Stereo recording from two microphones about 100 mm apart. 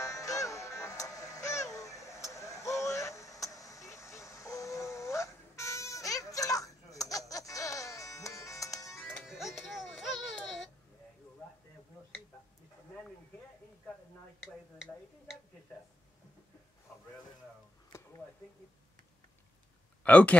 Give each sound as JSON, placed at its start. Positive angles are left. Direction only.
{"t": 0.0, "sound": "music", "side_deg": 35}
{"t": 9.2, "sound": "music", "side_deg": -5}
{"t": 14.4, "sound": "tick-tock", "side_deg": -5}
{"t": 20.0, "sound": "speech", "side_deg": 15}